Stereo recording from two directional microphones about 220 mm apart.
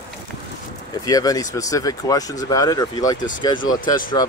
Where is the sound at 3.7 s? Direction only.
40° left (ahead or behind).